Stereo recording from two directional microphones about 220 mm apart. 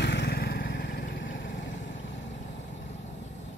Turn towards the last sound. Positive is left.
turn(degrees=55)  # may be behind; listen again after turning